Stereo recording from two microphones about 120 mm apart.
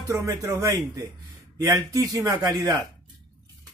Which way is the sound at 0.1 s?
25° right (ahead or behind).